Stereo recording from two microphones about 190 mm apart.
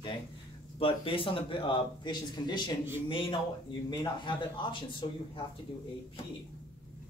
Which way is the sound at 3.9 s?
25° left (ahead or behind).